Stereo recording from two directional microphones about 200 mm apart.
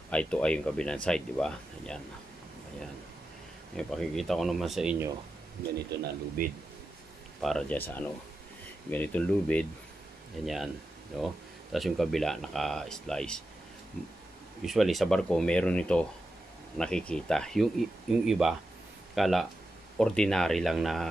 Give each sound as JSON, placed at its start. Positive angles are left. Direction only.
{"t": 0.1, "sound": "speech", "side_deg": 5}
{"t": 3.7, "sound": "speech", "side_deg": 0}
{"t": 5.9, "sound": "speech", "side_deg": -45}
{"t": 7.4, "sound": "speech", "side_deg": 5}
{"t": 14.6, "sound": "speech", "side_deg": 0}